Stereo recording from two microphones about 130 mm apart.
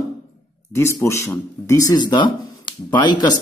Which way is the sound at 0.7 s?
20° left (ahead or behind).